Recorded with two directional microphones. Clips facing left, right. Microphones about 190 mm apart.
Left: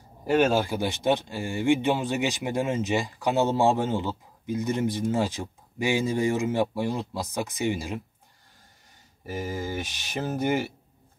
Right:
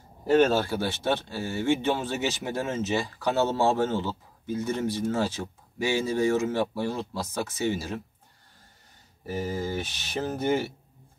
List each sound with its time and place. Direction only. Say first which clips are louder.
0.3 s speech: right 1 dB; 10° left (ahead or behind)
9.2 s speech: right 1 dB; 15° left (ahead or behind)